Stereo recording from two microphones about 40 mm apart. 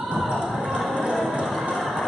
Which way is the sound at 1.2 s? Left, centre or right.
Centre.